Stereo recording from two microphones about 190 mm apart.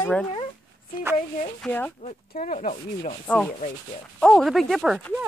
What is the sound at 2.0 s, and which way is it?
Speech, 40° left (ahead or behind).